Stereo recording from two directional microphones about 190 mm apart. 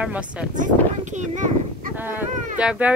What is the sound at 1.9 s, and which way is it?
Speech, 10° right (ahead or behind).